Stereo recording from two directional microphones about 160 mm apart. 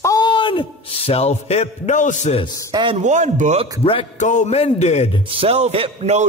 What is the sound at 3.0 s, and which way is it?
Speech, 50° right (ahead or behind).